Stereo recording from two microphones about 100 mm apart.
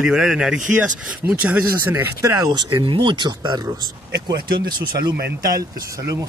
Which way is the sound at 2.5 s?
50° right (ahead or behind).